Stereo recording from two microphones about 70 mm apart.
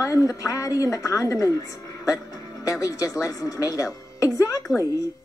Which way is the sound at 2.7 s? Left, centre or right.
Left.